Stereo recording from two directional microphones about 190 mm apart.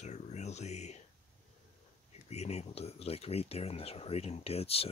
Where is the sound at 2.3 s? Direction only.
35° left (ahead or behind).